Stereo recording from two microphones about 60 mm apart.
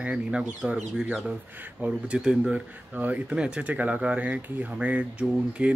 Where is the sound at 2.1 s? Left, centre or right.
Centre.